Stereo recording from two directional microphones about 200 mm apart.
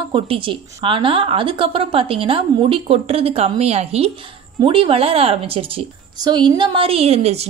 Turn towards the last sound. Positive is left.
turn(degrees=-30)  # may be behind; listen again after turning